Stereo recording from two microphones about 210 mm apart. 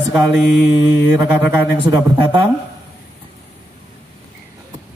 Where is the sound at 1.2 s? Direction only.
10° right (ahead or behind).